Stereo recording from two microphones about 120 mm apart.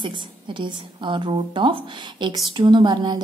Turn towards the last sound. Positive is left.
turn(degrees=-40)  # may be behind; listen again after turning